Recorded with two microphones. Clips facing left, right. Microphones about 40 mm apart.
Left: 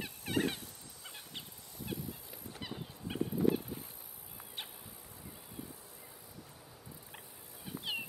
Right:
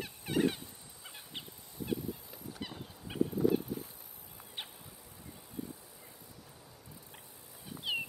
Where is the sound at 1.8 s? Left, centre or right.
Centre.